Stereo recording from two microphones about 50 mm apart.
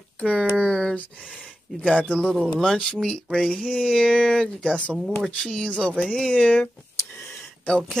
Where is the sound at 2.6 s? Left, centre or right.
Centre; by 6.7 s left.